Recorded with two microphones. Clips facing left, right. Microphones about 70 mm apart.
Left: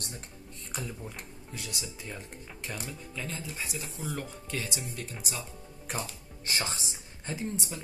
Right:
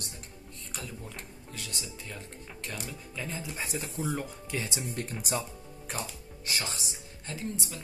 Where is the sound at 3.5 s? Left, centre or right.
Right.